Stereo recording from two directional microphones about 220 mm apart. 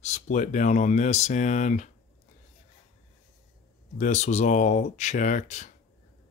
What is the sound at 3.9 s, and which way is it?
Speech, 35° left (ahead or behind).